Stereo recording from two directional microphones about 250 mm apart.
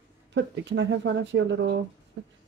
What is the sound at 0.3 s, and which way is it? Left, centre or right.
Speech, right.